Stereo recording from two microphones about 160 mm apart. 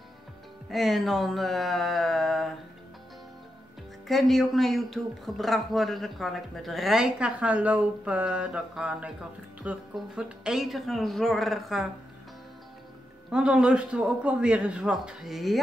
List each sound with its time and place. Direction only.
0.7 s speech: centre (ahead or behind)
4.1 s speech: centre (ahead or behind)
13.3 s speech: 5° right (ahead or behind)